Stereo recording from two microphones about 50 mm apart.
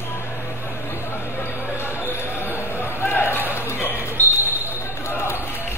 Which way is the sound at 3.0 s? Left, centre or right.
Left.